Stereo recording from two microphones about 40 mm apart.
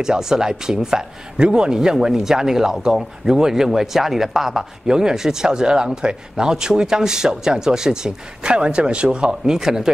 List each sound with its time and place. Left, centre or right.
0.0 s speech: centre